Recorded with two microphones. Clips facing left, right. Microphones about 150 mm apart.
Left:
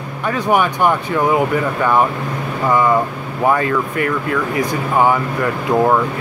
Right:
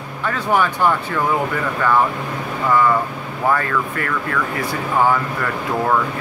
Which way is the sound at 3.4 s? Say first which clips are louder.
Left 3 dB; 20° left (ahead or behind).